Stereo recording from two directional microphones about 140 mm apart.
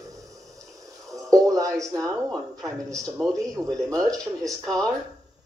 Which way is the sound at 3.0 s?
5° left (ahead or behind).